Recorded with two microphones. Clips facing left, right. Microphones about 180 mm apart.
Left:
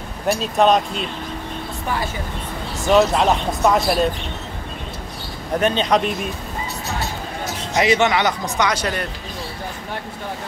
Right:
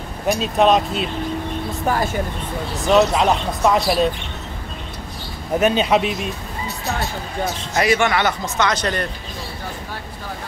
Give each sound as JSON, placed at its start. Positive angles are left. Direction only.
{"t": 0.3, "sound": "speech", "side_deg": 0}
{"t": 1.9, "sound": "speech", "side_deg": -45}
{"t": 2.7, "sound": "speech", "side_deg": 0}
{"t": 5.6, "sound": "speech", "side_deg": -5}
{"t": 7.7, "sound": "speech", "side_deg": 20}